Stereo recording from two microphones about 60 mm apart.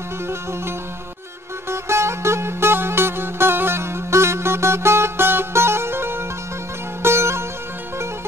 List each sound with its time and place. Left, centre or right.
1.7 s music: right
7.0 s sitar: right